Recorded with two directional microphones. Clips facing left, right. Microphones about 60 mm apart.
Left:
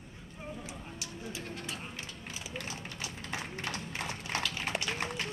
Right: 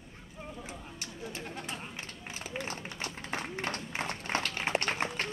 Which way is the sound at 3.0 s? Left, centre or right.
Right.